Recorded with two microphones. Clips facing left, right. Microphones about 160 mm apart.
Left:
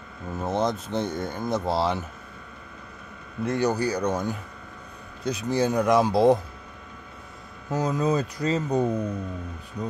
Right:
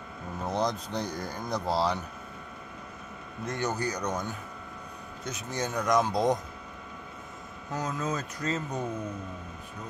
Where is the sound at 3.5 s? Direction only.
35° left (ahead or behind).